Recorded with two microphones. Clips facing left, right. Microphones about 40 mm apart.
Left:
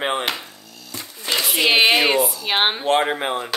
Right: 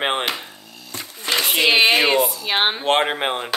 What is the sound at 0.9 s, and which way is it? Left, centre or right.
Music, right.